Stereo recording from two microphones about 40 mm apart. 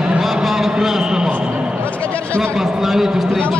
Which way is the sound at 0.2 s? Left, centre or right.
Centre.